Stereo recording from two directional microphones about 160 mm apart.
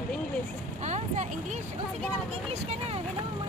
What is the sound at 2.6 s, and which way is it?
Speech, 40° right (ahead or behind).